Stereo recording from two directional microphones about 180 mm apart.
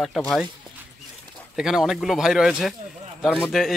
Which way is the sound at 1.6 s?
Centre (ahead or behind).